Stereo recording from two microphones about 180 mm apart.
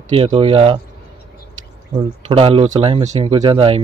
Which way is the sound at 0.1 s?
30° right (ahead or behind).